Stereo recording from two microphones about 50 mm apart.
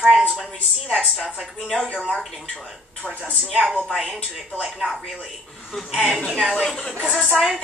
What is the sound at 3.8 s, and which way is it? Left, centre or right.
Speech, centre.